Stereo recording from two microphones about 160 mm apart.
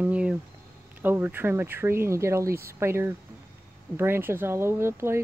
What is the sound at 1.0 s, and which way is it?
Speech, 15° right (ahead or behind).